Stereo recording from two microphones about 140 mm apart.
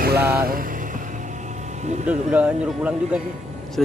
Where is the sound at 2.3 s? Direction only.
10° right (ahead or behind).